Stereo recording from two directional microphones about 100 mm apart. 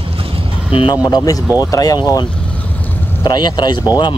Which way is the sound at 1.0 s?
40° left (ahead or behind).